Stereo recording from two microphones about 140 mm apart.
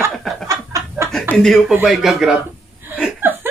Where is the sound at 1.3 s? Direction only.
Centre (ahead or behind).